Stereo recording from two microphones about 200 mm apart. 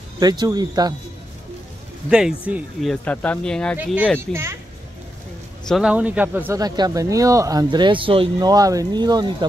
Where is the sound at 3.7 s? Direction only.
5° right (ahead or behind).